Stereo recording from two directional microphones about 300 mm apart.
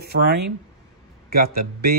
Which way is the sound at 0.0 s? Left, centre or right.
Right.